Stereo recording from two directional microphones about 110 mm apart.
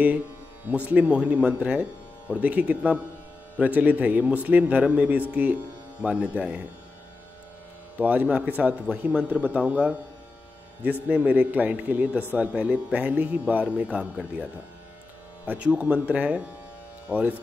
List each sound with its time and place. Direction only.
0.7 s a man's voice: 15° right (ahead or behind)
8.0 s a man's voice: 15° right (ahead or behind)
15.4 s a man's voice: 15° right (ahead or behind)